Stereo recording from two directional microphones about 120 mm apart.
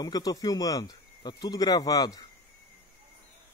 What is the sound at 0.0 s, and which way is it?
Speech, 30° left (ahead or behind).